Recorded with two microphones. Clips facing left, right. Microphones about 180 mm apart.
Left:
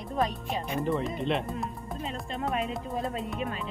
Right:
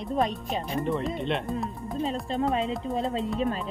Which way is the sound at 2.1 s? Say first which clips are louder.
Right 5 dB; 25° right (ahead or behind).